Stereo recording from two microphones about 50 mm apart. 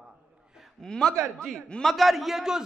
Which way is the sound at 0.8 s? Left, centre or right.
Centre.